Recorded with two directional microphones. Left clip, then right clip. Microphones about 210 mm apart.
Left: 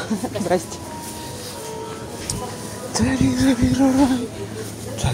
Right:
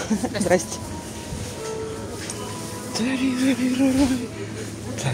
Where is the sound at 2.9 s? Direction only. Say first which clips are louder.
Left 4 dB; 15° left (ahead or behind).